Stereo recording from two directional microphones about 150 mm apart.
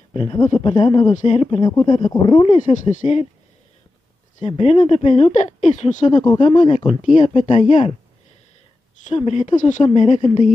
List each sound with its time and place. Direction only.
0.1 s speech: 35° left (ahead or behind)
1.1 s speech: 50° left (ahead or behind)
1.7 s speech: 30° left (ahead or behind)
2.6 s speech: 55° left (ahead or behind)
4.4 s speech: 45° left (ahead or behind)
6.2 s speech: 30° left (ahead or behind)
9.1 s speech: 50° left (ahead or behind)